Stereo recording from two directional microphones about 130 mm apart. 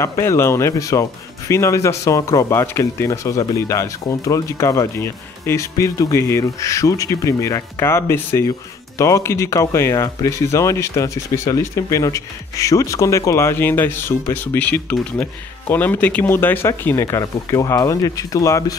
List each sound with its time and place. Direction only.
0.0 s speech: 20° left (ahead or behind)